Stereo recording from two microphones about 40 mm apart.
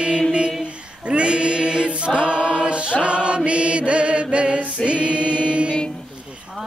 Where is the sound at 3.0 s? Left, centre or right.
Right.